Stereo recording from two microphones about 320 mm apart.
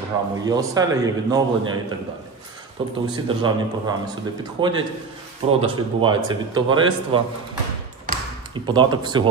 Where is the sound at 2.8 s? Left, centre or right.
Centre.